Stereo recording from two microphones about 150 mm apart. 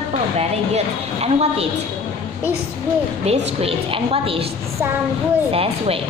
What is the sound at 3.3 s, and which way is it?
A woman's voice, 40° right (ahead or behind).